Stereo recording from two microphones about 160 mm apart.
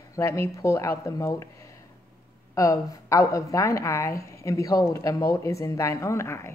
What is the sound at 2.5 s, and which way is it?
A woman's voice, 20° left (ahead or behind).